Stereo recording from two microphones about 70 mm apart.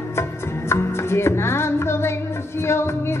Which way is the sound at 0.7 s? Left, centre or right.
Left.